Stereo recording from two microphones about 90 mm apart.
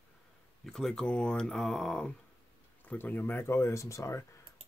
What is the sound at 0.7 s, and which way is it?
Speech, 5° left (ahead or behind).